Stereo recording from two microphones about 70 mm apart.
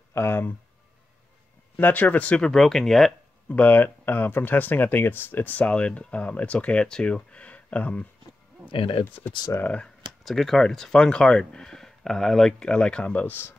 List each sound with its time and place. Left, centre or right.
0.1 s speech: left
1.8 s speech: left; by 3.2 s centre
3.4 s speech: left
9.5 s speech: left
10.2 s speech: centre; by 13.6 s left